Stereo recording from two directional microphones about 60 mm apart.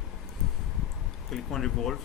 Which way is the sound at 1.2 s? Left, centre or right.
Centre.